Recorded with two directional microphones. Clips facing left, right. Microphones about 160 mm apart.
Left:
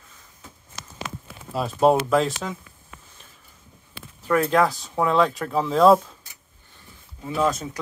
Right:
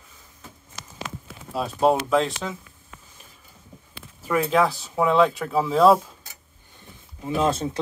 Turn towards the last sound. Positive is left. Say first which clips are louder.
# right 1 dB
turn(degrees=-25)  # may be behind; listen again after turning